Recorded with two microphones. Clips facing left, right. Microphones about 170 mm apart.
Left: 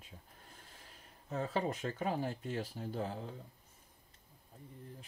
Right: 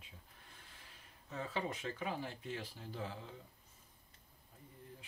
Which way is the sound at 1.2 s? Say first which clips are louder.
Left 5 dB; 40° left (ahead or behind).